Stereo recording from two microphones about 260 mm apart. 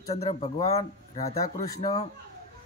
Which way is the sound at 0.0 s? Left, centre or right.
Left.